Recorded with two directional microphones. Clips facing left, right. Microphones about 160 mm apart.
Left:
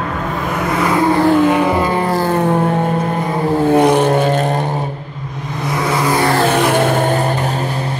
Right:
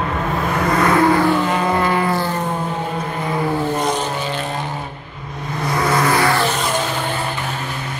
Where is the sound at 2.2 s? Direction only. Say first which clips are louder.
Left 8 dB; 60° left (ahead or behind).